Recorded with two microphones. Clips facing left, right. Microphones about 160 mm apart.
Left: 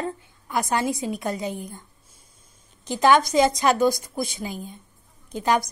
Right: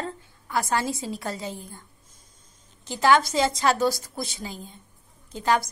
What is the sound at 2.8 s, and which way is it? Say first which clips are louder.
Speech: left 2 dB; 20° left (ahead or behind).